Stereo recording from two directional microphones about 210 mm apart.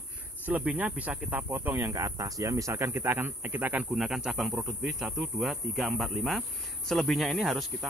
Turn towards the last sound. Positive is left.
turn(degrees=0)  # may be behind; listen again after turning